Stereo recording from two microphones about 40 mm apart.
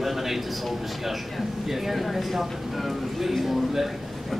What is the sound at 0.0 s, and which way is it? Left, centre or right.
Speech, centre.